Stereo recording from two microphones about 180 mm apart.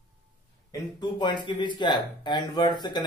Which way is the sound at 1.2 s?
25° left (ahead or behind).